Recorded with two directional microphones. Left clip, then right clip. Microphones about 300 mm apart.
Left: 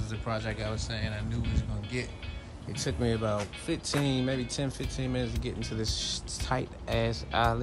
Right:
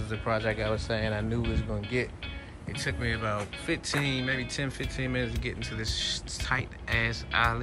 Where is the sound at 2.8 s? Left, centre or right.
Centre.